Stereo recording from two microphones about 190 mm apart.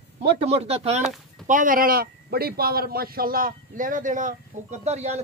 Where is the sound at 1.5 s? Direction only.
45° right (ahead or behind).